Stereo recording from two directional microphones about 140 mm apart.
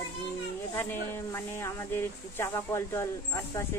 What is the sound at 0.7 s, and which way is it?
Speech, 15° left (ahead or behind).